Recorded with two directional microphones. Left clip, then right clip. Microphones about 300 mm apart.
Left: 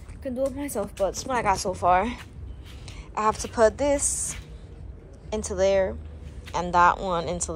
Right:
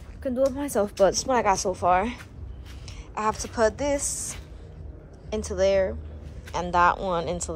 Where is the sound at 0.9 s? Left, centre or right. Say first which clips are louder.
Right 7 dB; right.